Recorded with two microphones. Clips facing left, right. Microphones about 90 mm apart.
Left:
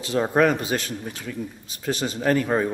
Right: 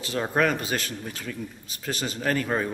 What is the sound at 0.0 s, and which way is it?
A man's voice, 15° left (ahead or behind).